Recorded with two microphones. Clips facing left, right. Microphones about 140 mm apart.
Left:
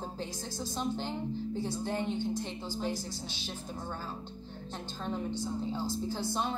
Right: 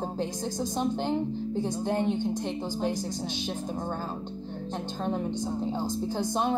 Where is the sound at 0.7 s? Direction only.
15° right (ahead or behind).